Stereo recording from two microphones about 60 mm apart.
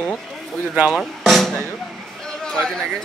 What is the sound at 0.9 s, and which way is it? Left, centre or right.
Drum, centre.